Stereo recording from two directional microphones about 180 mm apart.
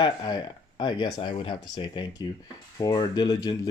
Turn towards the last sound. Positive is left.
turn(degrees=20)  # may be behind; listen again after turning